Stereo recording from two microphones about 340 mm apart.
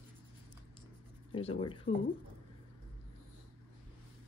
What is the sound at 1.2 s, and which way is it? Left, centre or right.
Speech, centre.